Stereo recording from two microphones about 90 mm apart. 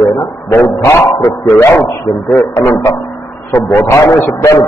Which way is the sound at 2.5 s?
30° left (ahead or behind).